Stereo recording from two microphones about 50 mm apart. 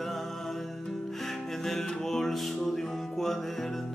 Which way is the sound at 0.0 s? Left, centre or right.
Centre.